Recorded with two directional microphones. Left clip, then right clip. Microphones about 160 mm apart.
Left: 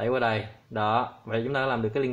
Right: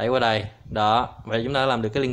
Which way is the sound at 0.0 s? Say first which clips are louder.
Right 4 dB; 20° right (ahead or behind).